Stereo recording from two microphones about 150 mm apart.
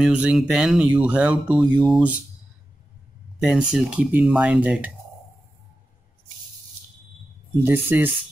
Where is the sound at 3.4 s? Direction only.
5° right (ahead or behind).